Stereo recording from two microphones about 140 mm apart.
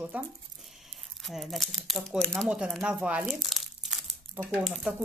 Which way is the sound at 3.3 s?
Centre (ahead or behind).